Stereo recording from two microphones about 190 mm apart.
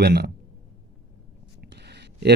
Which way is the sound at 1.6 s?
60° right (ahead or behind).